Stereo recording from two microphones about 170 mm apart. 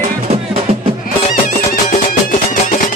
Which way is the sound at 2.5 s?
50° left (ahead or behind).